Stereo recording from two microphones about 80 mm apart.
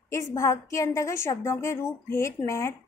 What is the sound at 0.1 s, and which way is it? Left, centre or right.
Speech, left.